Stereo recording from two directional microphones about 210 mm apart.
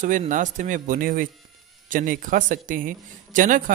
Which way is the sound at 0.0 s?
40° right (ahead or behind).